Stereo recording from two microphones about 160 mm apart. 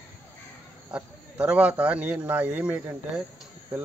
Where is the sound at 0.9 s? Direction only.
5° right (ahead or behind).